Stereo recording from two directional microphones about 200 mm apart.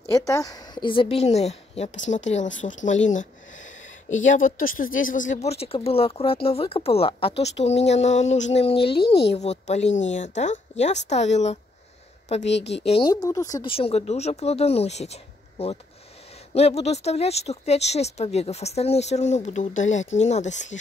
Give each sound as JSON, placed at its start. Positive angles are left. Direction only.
{"t": 0.1, "sound": "speech", "side_deg": 15}
{"t": 4.1, "sound": "speech", "side_deg": 40}
{"t": 9.0, "sound": "speech", "side_deg": 55}
{"t": 9.3, "sound": "speech", "side_deg": 35}
{"t": 12.4, "sound": "a woman's voice", "side_deg": 60}
{"t": 12.8, "sound": "speech", "side_deg": 30}
{"t": 13.1, "sound": "speech", "side_deg": 15}
{"t": 16.5, "sound": "speech", "side_deg": 30}